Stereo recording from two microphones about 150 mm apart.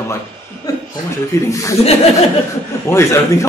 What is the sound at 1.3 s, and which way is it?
Speech, 20° left (ahead or behind).